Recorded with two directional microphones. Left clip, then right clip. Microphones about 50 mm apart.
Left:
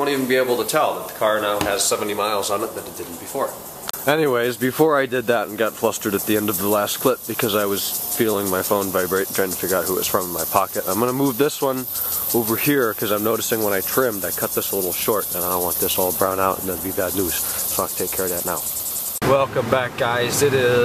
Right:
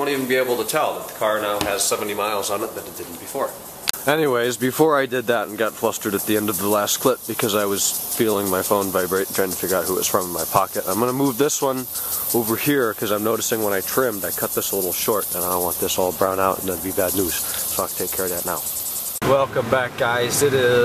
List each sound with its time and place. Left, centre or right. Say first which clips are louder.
0.0 s speech: left 1 dB; centre
4.3 s speech: even; right
4.9 s speech: left 1 dB; centre
6.8 s speech: right 1 dB; right
7.3 s speech: even; right
8.3 s speech: right 1 dB; centre
11.4 s speech: even; right; by 14.1 s centre
14.2 s speech: even; right
16.3 s speech: left 1 dB; centre
17.0 s speech: right 2 dB; right
17.3 s speech: even; centre